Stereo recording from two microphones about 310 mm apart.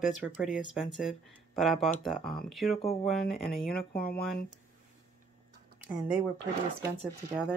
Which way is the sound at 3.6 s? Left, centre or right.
Left.